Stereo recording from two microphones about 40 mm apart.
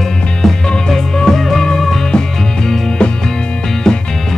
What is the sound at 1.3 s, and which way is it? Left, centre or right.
Music, centre.